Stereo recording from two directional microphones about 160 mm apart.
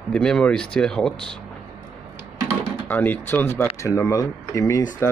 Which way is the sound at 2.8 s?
10° left (ahead or behind).